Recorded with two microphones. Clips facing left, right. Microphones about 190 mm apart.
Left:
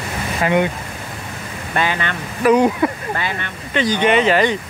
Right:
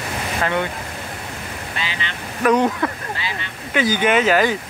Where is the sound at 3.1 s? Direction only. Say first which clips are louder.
Left 5 dB; 55° left (ahead or behind).